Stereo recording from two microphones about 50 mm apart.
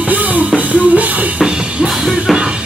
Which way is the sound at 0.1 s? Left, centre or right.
Right.